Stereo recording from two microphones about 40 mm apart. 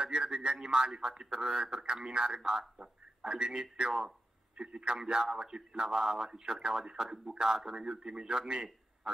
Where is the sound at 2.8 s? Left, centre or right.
Right.